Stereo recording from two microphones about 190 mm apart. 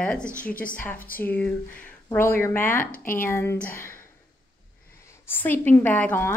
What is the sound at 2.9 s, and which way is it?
Speech, 45° left (ahead or behind).